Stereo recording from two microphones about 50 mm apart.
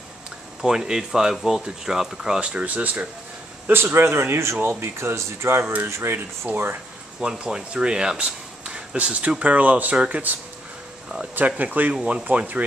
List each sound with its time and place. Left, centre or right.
0.6 s speech: centre
2.4 s speech: right
3.7 s speech: right
5.6 s speech: right
5.9 s speech: right
6.1 s speech: right
7.2 s speech: centre
11.3 s speech: right
11.9 s speech: centre
12.3 s speech: right